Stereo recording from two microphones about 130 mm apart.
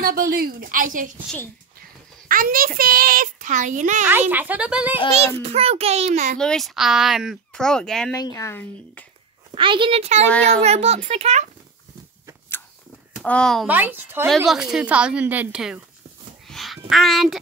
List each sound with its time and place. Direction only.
0.2 s a woman's voice: 90° right
2.2 s a child's voice: 90° right; by 4.1 s 70° right (ahead or behind)
4.3 s a woman's voice: 15° right (ahead or behind)
5.1 s a child's voice: 50° right (ahead or behind)
6.3 s speech: 5° left (ahead or behind)
8.1 s speech: 25° left (ahead or behind)
9.6 s a child's voice: 40° right (ahead or behind)
10.2 s a child's voice: 10° left (ahead or behind)
10.6 s a child's voice: 55° right (ahead or behind)
13.2 s speech: 5° left (ahead or behind)
13.7 s a woman's voice: 15° right (ahead or behind)
14.3 s a woman's voice: centre (ahead or behind)
16.4 s a sound: centre (ahead or behind)
16.9 s speech: centre (ahead or behind)